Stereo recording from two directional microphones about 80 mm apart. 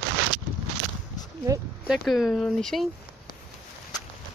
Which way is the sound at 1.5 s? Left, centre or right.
Right.